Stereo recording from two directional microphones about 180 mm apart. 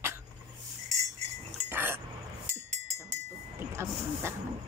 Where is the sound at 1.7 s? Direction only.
10° right (ahead or behind).